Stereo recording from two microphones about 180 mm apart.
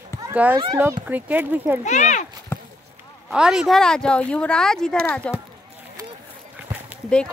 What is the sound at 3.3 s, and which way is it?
Speech, 5° right (ahead or behind).